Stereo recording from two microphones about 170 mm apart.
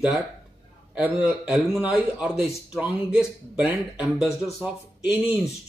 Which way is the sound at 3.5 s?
5° right (ahead or behind).